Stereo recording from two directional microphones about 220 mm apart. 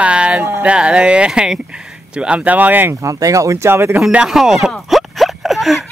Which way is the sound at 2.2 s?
5° right (ahead or behind).